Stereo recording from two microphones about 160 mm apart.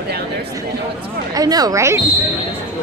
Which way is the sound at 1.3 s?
25° right (ahead or behind).